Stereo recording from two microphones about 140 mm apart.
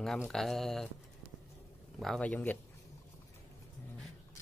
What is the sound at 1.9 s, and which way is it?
Speech, centre (ahead or behind).